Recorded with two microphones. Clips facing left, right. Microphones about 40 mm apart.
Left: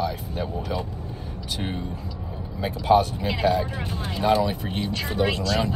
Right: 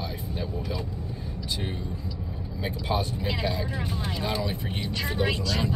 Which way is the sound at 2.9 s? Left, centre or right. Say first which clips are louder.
Left 11 dB; left.